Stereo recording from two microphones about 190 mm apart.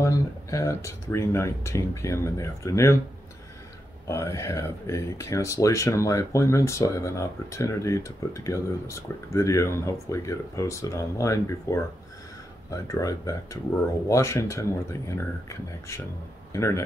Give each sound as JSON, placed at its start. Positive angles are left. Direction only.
{"t": 0.0, "sound": "speech", "side_deg": 15}
{"t": 4.1, "sound": "speech", "side_deg": 15}
{"t": 12.8, "sound": "speech", "side_deg": 15}